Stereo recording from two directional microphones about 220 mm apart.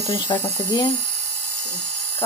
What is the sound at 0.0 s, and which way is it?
Speech, 15° left (ahead or behind).